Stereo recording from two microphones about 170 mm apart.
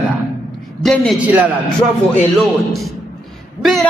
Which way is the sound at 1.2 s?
10° right (ahead or behind).